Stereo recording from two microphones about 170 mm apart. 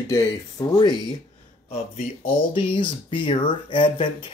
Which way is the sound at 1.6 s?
35° left (ahead or behind).